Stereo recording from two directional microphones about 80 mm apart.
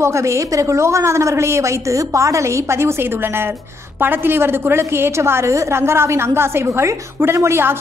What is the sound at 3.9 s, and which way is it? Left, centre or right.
A woman's voice, right.